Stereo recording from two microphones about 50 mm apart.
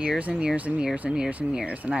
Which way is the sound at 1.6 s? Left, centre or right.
Right.